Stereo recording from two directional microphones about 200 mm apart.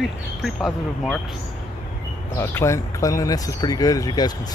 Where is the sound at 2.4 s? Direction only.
15° left (ahead or behind).